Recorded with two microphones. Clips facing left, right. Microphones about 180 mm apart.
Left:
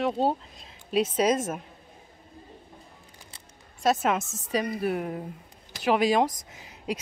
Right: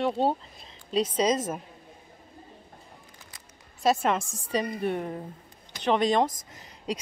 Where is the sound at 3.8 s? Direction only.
Centre (ahead or behind).